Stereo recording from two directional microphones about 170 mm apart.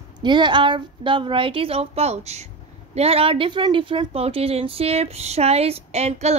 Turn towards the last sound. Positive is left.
turn(degrees=-40)  # may be behind; listen again after turning